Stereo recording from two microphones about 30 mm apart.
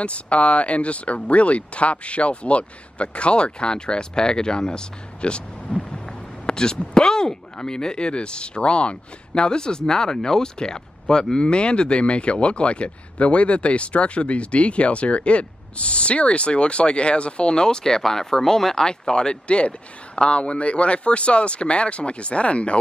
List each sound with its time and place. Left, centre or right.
0.0 s speech: left
6.0 s a sound: left
6.9 s speech: left
11.4 s speech: left